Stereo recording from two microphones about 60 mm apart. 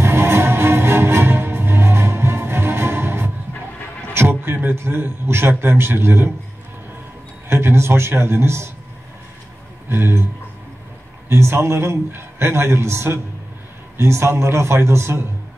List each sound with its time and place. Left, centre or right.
0.0 s music: right
4.1 s a man's voice: right
7.4 s a man's voice: right
9.8 s speech: right
11.2 s a man's voice: right